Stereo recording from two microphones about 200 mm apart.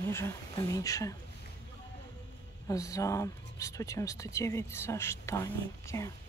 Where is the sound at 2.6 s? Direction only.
15° left (ahead or behind).